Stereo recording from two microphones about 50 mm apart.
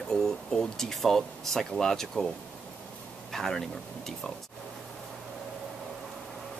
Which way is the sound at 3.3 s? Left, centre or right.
Centre.